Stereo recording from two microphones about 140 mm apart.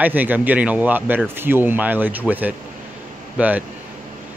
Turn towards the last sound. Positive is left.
turn(degrees=-10)  # may be behind; listen again after turning